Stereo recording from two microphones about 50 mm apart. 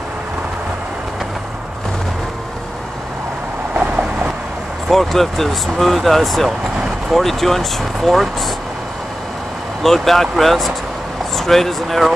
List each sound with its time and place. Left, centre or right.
3.7 s vehicle: right
4.8 s speech: centre
9.8 s speech: centre